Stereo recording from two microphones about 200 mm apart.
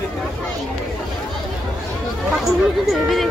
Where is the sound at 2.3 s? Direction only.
Centre (ahead or behind).